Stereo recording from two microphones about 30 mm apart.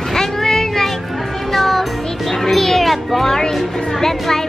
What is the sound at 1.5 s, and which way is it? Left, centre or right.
Music, centre.